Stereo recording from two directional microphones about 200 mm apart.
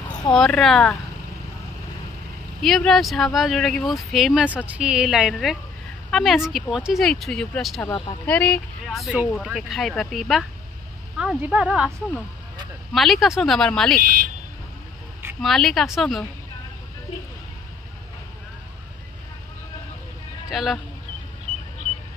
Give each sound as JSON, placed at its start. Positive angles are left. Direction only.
{"t": 0.3, "sound": "speech", "side_deg": 5}
{"t": 2.6, "sound": "speech", "side_deg": 0}
{"t": 7.9, "sound": "speech", "side_deg": 20}
{"t": 8.3, "sound": "speech", "side_deg": 5}
{"t": 12.9, "sound": "speech", "side_deg": 0}
{"t": 15.4, "sound": "speech", "side_deg": 0}
{"t": 20.4, "sound": "speech", "side_deg": 0}